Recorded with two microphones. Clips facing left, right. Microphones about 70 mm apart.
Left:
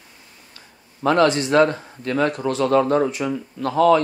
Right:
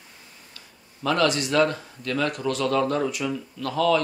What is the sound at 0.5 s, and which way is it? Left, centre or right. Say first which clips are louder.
Speech: left 4 dB; left.